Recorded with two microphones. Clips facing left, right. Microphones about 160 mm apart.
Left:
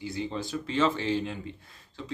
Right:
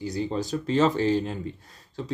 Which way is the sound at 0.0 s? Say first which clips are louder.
Right 5 dB; 40° right (ahead or behind).